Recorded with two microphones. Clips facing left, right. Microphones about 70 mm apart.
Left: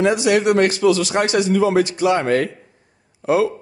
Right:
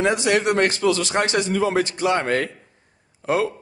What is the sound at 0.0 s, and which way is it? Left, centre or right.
A man's voice, right.